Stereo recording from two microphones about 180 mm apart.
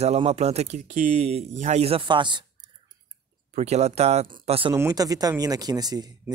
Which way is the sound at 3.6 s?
35° right (ahead or behind).